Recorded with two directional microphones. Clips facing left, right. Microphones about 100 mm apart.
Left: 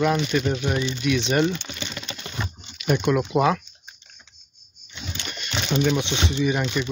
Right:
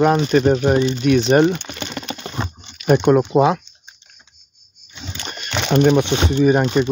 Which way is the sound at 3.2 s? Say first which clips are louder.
Right 5 dB; 25° right (ahead or behind).